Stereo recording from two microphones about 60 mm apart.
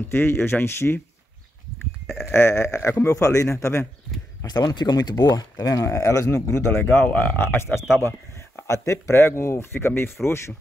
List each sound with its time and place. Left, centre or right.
0.1 s speech: left
2.3 s speech: left
4.4 s speech: left
6.8 s speech: left
8.6 s speech: left